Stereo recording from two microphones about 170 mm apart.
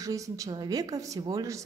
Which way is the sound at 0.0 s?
20° right (ahead or behind).